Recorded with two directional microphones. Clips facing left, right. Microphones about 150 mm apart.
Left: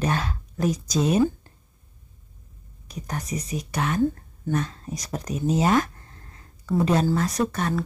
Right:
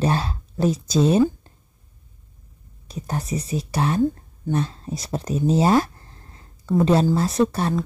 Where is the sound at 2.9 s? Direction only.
30° right (ahead or behind).